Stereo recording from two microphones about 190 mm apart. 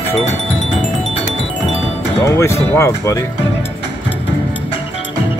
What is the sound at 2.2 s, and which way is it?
Speech, 15° left (ahead or behind).